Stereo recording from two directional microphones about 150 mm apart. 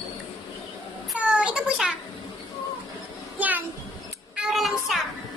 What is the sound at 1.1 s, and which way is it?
Speech, 10° right (ahead or behind).